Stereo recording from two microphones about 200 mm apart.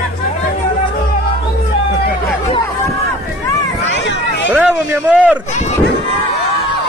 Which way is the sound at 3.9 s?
65° left (ahead or behind).